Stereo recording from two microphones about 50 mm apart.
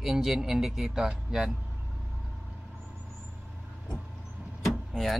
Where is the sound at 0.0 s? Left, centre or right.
Centre.